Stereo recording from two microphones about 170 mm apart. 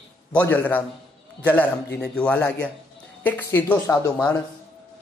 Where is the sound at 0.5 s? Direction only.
10° left (ahead or behind).